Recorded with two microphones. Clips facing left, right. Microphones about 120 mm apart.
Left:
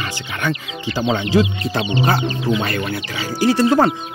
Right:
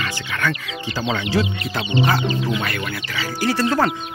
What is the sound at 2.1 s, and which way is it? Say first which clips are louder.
Speech: left 2 dB; 30° left (ahead or behind).